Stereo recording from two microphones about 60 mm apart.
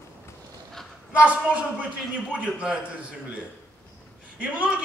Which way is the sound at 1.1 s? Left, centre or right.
Right.